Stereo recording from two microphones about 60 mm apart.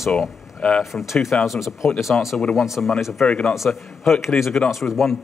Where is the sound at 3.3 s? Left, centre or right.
Centre.